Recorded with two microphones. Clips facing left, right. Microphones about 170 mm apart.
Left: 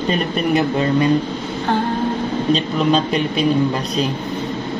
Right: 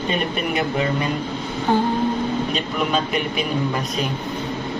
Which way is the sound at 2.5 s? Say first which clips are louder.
Left 6 dB; 30° left (ahead or behind).